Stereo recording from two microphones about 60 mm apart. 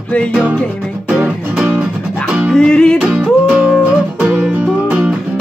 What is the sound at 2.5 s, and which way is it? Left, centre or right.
Music, centre.